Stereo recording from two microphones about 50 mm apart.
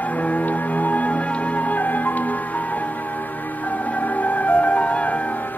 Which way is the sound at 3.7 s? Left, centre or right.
Left.